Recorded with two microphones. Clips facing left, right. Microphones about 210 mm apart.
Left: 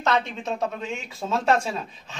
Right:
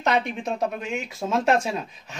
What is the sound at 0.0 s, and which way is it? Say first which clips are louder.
Speech: right 1 dB; 15° right (ahead or behind).